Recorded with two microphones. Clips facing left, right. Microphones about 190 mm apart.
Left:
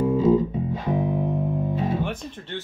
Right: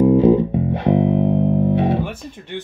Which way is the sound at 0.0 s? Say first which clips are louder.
Right 6 dB; 65° right (ahead or behind).